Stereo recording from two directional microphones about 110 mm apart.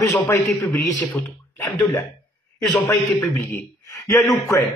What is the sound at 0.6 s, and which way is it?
A man's voice, 15° left (ahead or behind).